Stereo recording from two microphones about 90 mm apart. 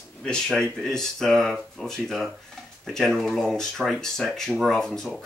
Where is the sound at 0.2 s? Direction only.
10° left (ahead or behind).